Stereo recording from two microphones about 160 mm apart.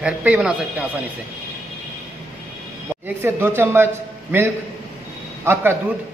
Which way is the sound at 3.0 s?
15° right (ahead or behind).